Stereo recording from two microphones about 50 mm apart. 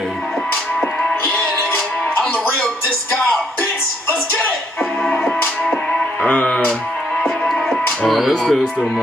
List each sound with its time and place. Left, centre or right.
6.2 s music: left
7.2 s music: centre
8.1 s speech: centre